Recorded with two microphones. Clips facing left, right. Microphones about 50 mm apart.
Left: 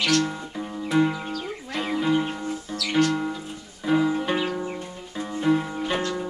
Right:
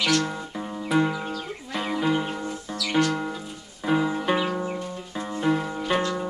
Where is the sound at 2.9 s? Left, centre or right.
Centre.